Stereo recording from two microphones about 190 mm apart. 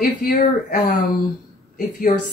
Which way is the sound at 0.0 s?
50° left (ahead or behind).